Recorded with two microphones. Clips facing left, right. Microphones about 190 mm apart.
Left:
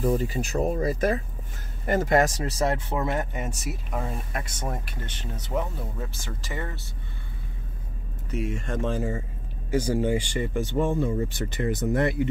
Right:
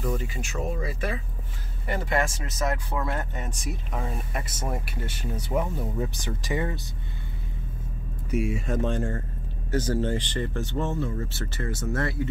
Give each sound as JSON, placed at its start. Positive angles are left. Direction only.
{"t": 0.0, "sound": "speech", "side_deg": 35}
{"t": 8.3, "sound": "speech", "side_deg": -10}